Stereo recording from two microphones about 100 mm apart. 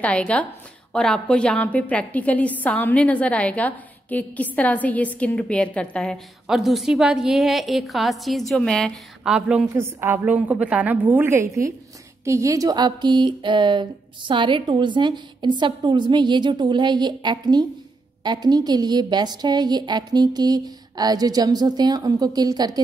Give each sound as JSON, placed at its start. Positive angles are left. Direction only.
{"t": 0.0, "sound": "a woman's voice", "side_deg": 10}
{"t": 6.4, "sound": "a woman's voice", "side_deg": -5}
{"t": 9.2, "sound": "a woman's voice", "side_deg": -10}
{"t": 9.8, "sound": "a woman's voice", "side_deg": -25}